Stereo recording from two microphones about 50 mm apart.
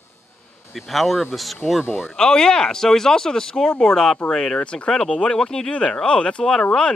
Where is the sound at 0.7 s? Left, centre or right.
Centre.